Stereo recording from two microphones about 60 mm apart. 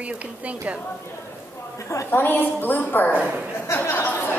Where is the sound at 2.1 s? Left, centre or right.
Left.